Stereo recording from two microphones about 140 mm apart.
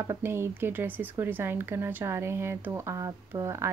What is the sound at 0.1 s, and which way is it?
A woman's voice, 15° right (ahead or behind).